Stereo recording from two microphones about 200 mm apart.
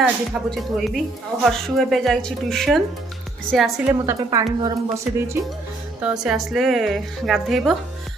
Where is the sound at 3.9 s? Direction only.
15° right (ahead or behind).